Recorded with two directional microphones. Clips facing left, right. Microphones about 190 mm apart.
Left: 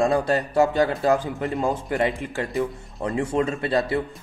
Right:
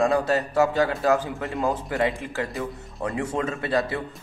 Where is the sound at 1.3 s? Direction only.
20° left (ahead or behind).